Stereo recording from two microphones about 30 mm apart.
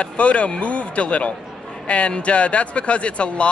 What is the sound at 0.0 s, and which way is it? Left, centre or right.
Speech, left.